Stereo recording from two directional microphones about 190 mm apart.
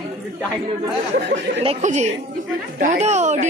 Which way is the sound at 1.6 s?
35° right (ahead or behind).